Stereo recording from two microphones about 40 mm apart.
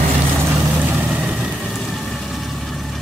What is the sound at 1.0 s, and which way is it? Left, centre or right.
Vehicle, right.